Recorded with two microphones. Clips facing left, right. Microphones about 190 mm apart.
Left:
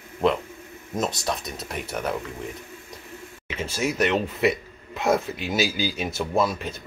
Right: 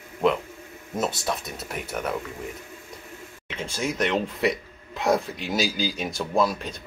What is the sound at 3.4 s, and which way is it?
Speech, 5° left (ahead or behind).